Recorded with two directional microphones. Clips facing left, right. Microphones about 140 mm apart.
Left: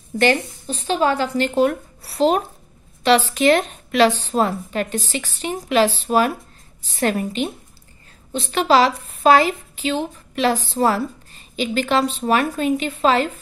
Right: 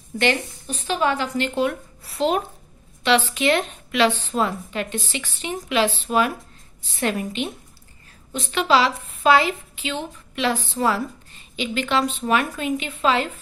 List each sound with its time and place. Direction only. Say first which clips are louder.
0.7 s a woman's voice: left 3 dB; 30° left (ahead or behind)